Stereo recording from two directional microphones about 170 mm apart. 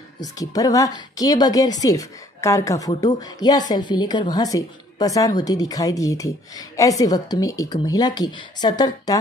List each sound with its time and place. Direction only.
0.2 s a woman's voice: 20° left (ahead or behind)